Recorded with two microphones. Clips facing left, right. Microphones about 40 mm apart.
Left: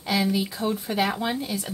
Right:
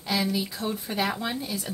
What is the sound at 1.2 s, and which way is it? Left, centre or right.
Speech, left.